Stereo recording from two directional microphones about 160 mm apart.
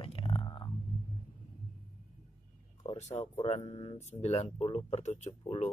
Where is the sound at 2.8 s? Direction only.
45° left (ahead or behind).